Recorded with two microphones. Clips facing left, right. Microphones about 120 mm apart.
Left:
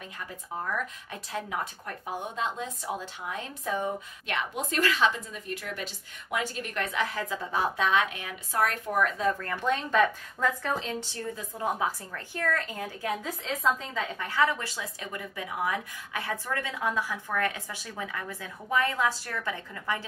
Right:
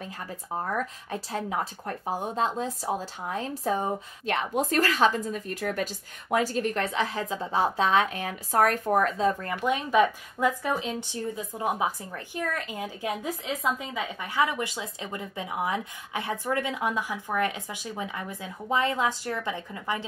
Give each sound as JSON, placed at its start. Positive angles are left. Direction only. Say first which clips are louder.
{"t": 0.6, "sound": "speech", "louder": "right 3 dB", "side_deg": -35}
{"t": 9.4, "sound": "speech", "louder": "right 1 dB", "side_deg": -15}